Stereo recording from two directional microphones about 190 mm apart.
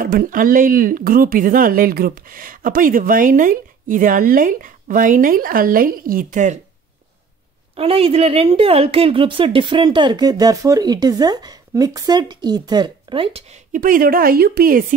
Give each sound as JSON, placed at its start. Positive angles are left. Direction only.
{"t": 0.0, "sound": "speech", "side_deg": -45}
{"t": 7.7, "sound": "a woman's voice", "side_deg": -30}